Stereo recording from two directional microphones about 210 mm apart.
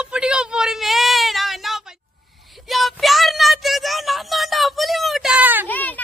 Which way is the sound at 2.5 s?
Centre (ahead or behind).